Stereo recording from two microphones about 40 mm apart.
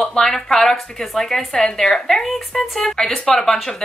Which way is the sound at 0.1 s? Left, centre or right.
Centre.